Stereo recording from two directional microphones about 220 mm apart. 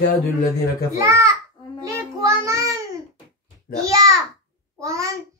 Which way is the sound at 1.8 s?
15° right (ahead or behind).